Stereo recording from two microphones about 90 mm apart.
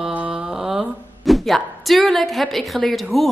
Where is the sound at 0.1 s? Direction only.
15° right (ahead or behind).